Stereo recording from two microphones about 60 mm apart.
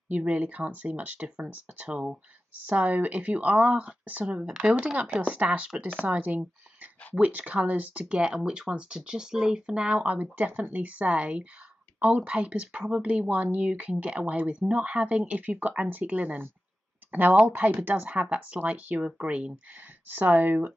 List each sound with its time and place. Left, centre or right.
0.1 s speech: right
2.6 s speech: right
20.1 s speech: right